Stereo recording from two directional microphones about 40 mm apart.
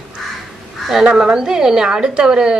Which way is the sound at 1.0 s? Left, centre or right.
Right.